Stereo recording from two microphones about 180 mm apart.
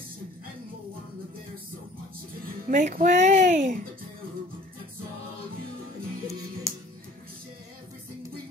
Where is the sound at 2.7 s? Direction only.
45° right (ahead or behind).